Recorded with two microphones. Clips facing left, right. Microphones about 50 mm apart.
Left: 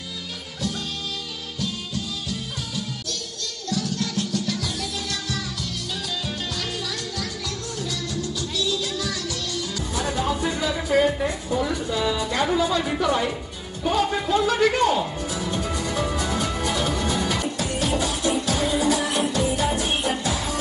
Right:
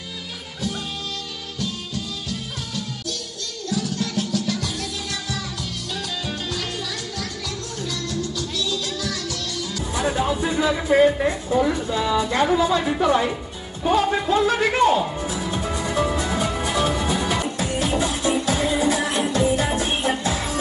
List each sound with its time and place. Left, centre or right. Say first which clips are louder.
1.6 s music: even; centre
7.8 s music: right 2 dB; centre
9.9 s music: right 3 dB; centre
11.2 s a woman's voice: right 4 dB; right
14.3 s music: even; right